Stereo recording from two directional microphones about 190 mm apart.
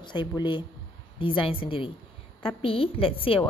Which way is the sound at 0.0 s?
25° left (ahead or behind).